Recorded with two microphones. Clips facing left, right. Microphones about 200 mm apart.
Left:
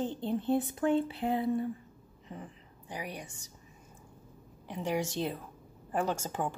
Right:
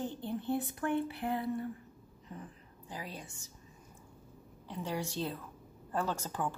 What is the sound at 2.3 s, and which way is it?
A woman's voice, 20° left (ahead or behind).